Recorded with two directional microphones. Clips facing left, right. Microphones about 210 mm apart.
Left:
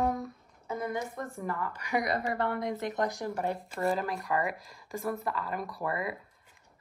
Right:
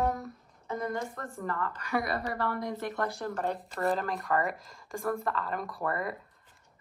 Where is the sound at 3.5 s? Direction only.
Centre (ahead or behind).